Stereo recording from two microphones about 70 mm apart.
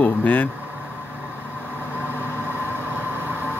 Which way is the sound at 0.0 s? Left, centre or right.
Left.